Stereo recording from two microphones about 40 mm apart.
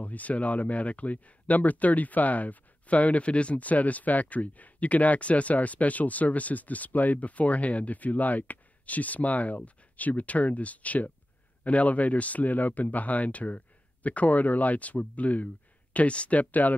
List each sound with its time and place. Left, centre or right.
0.0 s speech: left